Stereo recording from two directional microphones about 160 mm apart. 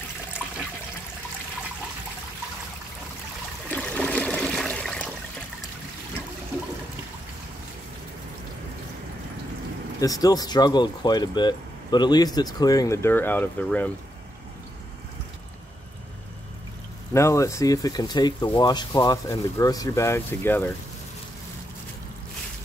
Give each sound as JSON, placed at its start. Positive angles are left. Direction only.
{"t": 3.6, "sound": "a sound", "side_deg": 10}
{"t": 9.9, "sound": "speech", "side_deg": 20}
{"t": 17.1, "sound": "speech", "side_deg": 20}